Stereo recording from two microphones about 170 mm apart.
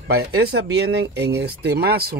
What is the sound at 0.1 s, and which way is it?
Speech, 70° right (ahead or behind).